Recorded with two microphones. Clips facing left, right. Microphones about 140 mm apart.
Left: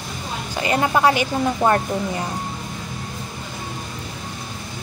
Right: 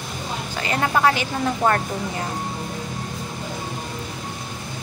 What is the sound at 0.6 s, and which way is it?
Speech, 20° left (ahead or behind).